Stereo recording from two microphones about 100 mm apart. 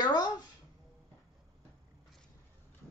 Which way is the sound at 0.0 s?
45° left (ahead or behind).